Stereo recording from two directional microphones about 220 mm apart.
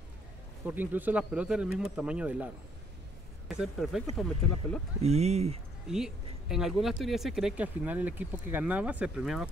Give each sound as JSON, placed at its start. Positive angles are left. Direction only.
{"t": 0.7, "sound": "speech", "side_deg": -10}
{"t": 5.0, "sound": "speech", "side_deg": -30}
{"t": 5.9, "sound": "speech", "side_deg": 0}